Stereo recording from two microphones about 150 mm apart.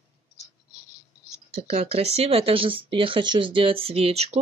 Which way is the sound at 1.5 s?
45° right (ahead or behind).